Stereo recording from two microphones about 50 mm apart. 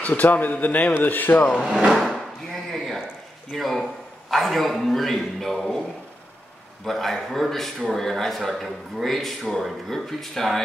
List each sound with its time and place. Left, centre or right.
0.0 s a man's voice: left
1.4 s speech: centre
1.9 s a man's voice: centre
6.9 s a man's voice: centre